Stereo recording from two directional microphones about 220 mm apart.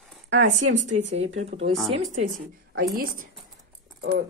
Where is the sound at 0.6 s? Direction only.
35° right (ahead or behind).